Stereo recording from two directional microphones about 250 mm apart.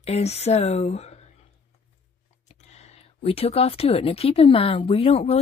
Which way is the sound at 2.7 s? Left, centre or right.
Left.